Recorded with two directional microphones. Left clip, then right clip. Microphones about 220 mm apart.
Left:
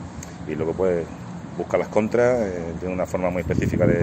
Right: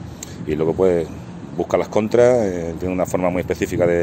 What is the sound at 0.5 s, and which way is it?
Speech, 50° right (ahead or behind).